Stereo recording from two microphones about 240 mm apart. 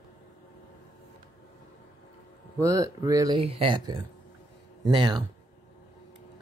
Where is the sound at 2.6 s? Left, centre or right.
Centre.